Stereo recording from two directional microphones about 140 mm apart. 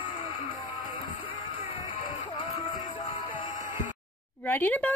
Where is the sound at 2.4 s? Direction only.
35° left (ahead or behind).